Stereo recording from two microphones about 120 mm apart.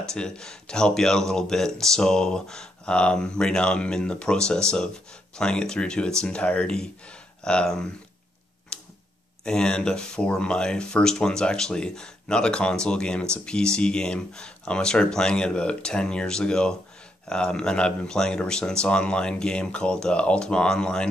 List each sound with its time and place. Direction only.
0.1 s speech: 5° left (ahead or behind)
8.7 s tick-tock: 5° left (ahead or behind)
9.4 s speech: 5° left (ahead or behind)